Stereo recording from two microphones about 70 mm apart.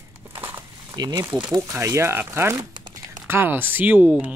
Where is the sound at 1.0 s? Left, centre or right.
Right.